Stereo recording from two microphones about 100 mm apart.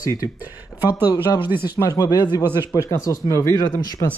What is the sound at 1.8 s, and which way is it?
A man's voice, 35° left (ahead or behind).